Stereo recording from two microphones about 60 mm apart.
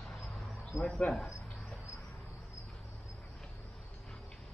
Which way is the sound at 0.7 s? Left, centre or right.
Left.